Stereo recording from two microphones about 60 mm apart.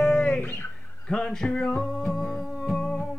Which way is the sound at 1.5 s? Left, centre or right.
Centre.